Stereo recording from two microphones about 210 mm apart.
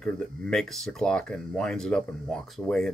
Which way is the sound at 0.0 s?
5° left (ahead or behind).